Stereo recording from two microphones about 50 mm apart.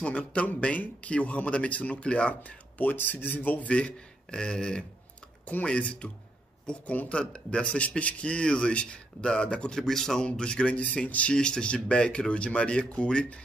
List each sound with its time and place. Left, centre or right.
0.0 s speech: left
2.8 s speech: left
3.3 s speech: left
5.4 s speech: left; by 10.2 s centre
10.2 s speech: centre